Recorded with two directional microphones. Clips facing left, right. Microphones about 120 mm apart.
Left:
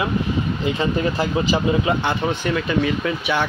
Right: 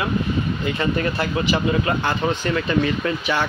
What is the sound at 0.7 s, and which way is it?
Speech, 15° left (ahead or behind).